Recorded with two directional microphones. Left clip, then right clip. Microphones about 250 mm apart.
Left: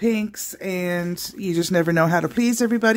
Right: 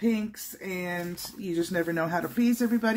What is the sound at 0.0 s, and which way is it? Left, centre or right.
Speech, left.